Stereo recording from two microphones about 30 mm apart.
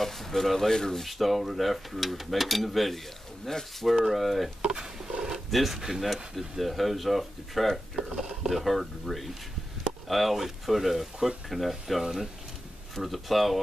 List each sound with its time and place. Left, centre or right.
0.0 s speech: centre
0.7 s speech: centre
1.0 s speech: centre
3.5 s speech: centre
3.9 s speech: centre
4.6 s a sound: right
5.5 s speech: centre
8.4 s speech: centre
8.6 s speech: centre